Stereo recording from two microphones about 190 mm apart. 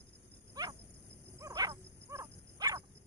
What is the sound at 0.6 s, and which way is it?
Wild animals, 20° right (ahead or behind).